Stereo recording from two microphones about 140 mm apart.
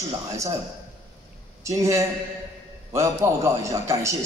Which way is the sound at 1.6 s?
20° right (ahead or behind).